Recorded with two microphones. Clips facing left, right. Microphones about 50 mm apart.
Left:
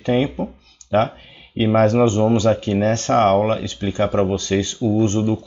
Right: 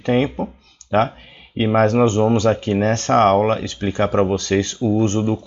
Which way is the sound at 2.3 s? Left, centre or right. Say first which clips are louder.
Even; right.